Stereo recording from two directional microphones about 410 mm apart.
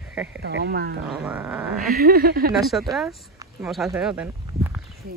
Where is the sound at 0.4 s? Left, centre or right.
Right.